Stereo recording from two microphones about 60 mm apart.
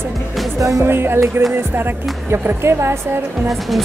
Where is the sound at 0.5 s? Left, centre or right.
Right.